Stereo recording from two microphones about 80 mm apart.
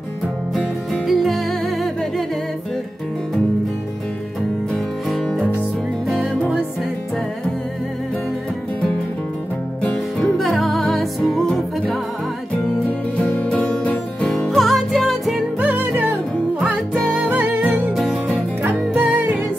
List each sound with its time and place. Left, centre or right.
0.9 s music: centre
5.1 s music: centre
9.8 s music: centre
13.3 s music: centre
14.4 s music: centre
15.6 s music: right
17.9 s music: centre
18.6 s music: right